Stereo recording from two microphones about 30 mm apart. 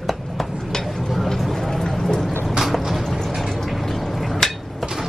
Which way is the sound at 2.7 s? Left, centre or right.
Centre.